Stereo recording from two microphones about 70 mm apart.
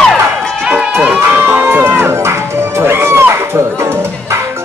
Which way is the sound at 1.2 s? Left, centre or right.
Right.